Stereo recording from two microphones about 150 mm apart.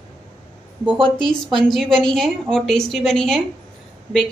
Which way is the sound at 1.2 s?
Centre (ahead or behind).